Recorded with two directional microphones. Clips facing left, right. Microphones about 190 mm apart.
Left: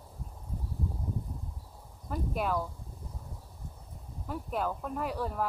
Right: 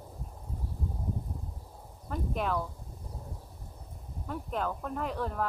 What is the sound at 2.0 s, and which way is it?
Speech, 5° left (ahead or behind).